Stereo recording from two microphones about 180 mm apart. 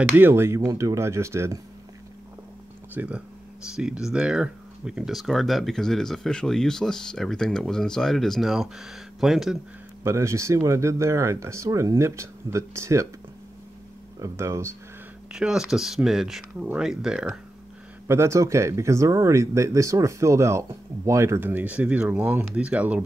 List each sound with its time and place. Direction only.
0.1 s speech: 10° right (ahead or behind)
2.9 s speech: 10° right (ahead or behind)
10.0 s speech: 15° right (ahead or behind)
14.2 s speech: 15° right (ahead or behind)
15.3 s speech: 5° right (ahead or behind)
18.0 s speech: 15° right (ahead or behind)